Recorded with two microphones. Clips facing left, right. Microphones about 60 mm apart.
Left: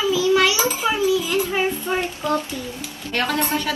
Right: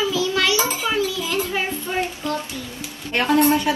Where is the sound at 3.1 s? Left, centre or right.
Right.